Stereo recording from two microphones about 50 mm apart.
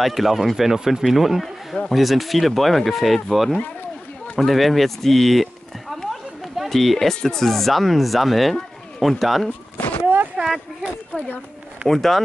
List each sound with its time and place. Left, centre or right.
0.0 s speech: centre
4.4 s a sound: centre
7.2 s speech: centre
9.8 s a sound: left
10.3 s speech: centre
11.1 s speech: left
11.9 s speech: centre